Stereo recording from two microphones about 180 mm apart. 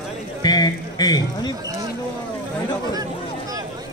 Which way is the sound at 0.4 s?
20° left (ahead or behind).